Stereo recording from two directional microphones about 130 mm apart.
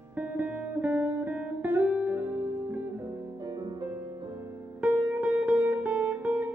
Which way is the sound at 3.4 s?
30° right (ahead or behind).